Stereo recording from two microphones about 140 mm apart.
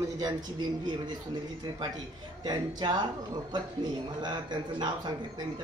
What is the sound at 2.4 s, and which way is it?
Speech, 30° right (ahead or behind).